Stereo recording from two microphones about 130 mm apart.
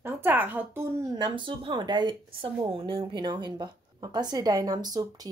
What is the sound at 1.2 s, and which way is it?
Speech, 35° right (ahead or behind).